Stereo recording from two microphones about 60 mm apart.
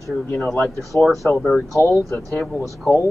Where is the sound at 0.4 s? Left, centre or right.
Centre.